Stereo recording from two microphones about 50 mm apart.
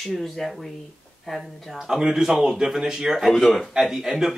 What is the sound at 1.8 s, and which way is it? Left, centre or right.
Speech, centre.